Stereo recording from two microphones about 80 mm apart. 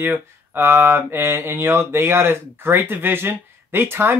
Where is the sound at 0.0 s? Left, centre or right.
Right.